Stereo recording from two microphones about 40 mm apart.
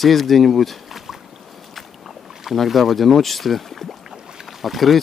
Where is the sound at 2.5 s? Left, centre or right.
Centre.